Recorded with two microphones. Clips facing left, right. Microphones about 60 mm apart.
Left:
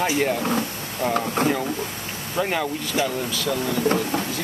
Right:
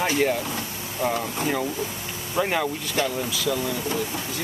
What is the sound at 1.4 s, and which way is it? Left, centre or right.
Speech, left.